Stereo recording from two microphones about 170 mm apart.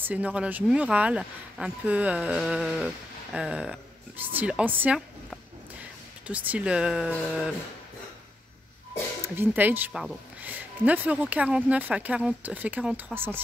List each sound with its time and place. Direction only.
0.0 s speech: 10° right (ahead or behind)
9.2 s speech: 15° right (ahead or behind)